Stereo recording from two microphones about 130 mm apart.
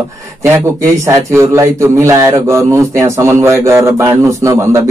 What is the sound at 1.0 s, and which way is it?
A man's voice, 20° right (ahead or behind).